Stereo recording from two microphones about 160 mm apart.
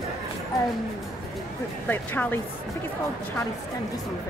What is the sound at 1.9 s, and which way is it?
Speech, 15° left (ahead or behind).